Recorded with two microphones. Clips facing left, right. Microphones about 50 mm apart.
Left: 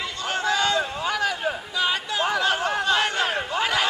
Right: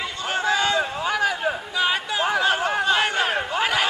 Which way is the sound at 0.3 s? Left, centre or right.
Right.